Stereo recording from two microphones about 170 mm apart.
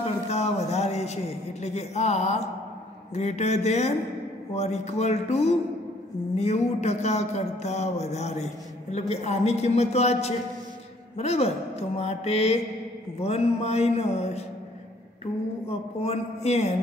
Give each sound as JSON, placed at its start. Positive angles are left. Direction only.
{"t": 0.3, "sound": "a man's voice", "side_deg": 40}
{"t": 15.7, "sound": "speech", "side_deg": 35}